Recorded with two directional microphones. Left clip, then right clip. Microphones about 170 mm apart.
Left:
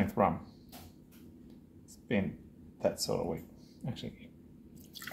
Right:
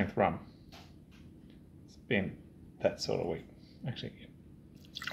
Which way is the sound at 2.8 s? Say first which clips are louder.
Even; 20° right (ahead or behind).